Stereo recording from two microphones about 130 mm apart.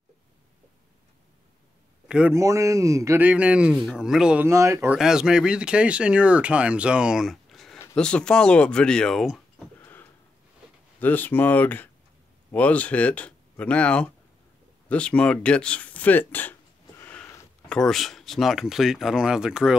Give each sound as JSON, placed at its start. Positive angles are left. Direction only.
{"t": 2.0, "sound": "a man's voice", "side_deg": -5}
{"t": 2.3, "sound": "speech", "side_deg": -25}
{"t": 3.2, "sound": "speech", "side_deg": -10}
{"t": 4.5, "sound": "speech", "side_deg": -25}
{"t": 4.9, "sound": "speech", "side_deg": -5}
{"t": 9.8, "sound": "a sound", "side_deg": 15}
{"t": 11.0, "sound": "speech", "side_deg": 15}
{"t": 17.0, "sound": "sniff", "side_deg": 10}
{"t": 17.6, "sound": "speech", "side_deg": 5}